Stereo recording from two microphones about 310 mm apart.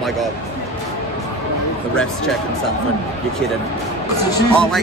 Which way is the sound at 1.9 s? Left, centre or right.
Centre.